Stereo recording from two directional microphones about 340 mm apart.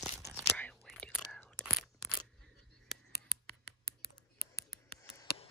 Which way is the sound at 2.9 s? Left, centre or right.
Left.